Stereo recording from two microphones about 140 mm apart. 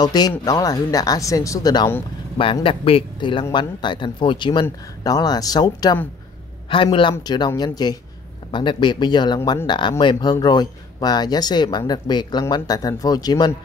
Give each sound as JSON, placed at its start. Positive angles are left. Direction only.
{"t": 0.0, "sound": "speech", "side_deg": 30}
{"t": 2.3, "sound": "a man's voice", "side_deg": 40}